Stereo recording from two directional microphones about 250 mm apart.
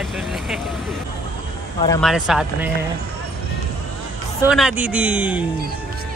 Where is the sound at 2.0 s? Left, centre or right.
Centre.